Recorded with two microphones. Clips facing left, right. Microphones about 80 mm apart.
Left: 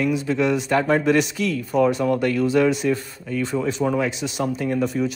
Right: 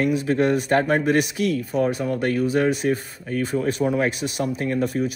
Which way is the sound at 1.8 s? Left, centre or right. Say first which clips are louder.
Left 7 dB; left.